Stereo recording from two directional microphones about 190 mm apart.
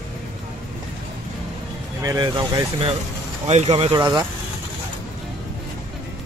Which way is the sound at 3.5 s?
35° right (ahead or behind).